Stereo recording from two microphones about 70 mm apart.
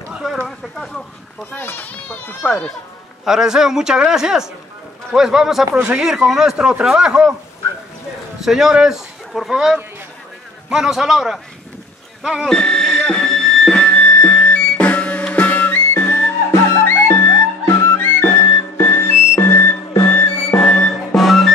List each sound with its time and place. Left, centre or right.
0.4 s a man's voice: centre
1.5 s a child's voice: left
2.4 s speech: centre
3.3 s a man's voice: centre
8.4 s a man's voice: centre
12.4 s buzzer: centre
13.0 s music: centre; by 19.8 s left
20.1 s music: left
20.6 s music: centre